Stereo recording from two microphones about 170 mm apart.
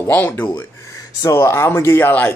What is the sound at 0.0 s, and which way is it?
Speech, 10° left (ahead or behind).